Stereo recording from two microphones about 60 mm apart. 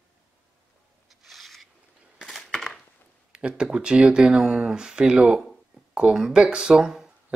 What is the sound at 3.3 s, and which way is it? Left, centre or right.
Speech, centre.